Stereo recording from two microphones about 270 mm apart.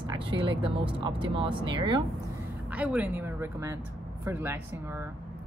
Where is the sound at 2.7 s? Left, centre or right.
Centre.